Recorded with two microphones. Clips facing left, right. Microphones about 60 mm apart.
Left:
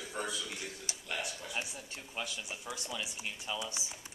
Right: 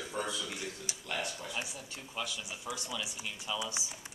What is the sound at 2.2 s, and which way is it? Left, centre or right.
Speech, left.